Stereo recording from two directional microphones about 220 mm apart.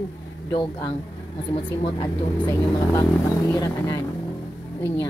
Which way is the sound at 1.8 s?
15° left (ahead or behind).